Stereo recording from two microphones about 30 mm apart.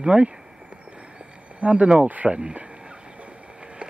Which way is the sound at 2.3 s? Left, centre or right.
Right.